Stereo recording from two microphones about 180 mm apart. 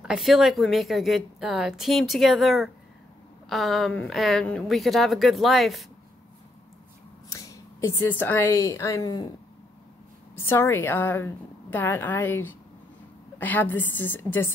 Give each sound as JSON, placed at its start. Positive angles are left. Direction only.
{"t": 0.0, "sound": "a woman's voice", "side_deg": 0}
{"t": 7.2, "sound": "a sound", "side_deg": 15}
{"t": 8.2, "sound": "a woman's voice", "side_deg": 10}
{"t": 10.3, "sound": "a woman's voice", "side_deg": 10}